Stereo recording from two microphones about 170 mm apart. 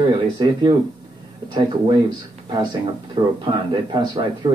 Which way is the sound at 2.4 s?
20° right (ahead or behind).